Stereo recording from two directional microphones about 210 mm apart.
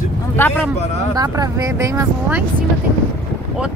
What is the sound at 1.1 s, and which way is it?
Speech, 20° right (ahead or behind).